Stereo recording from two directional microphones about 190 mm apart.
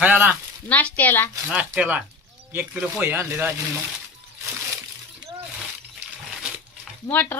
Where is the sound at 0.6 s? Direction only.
10° left (ahead or behind).